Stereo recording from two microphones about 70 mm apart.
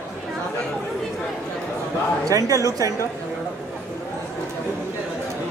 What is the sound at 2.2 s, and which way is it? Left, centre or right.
Speech, right.